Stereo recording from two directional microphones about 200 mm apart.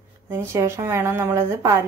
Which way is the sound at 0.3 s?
10° right (ahead or behind).